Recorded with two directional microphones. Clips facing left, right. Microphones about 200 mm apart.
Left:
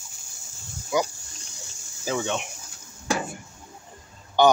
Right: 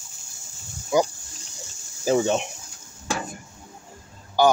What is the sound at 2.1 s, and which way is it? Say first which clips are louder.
Speech: right 7 dB; 35° right (ahead or behind).